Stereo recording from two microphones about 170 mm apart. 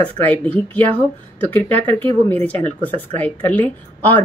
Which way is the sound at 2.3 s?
10° left (ahead or behind).